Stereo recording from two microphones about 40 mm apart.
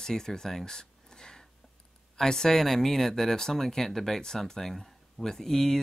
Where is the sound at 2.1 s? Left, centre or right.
Centre.